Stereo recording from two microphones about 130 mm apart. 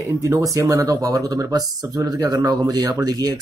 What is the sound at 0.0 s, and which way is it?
Speech, 25° right (ahead or behind).